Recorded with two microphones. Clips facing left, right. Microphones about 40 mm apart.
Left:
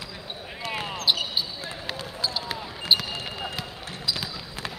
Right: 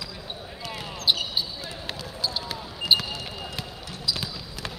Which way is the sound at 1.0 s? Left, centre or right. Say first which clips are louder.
Right 1 dB; centre.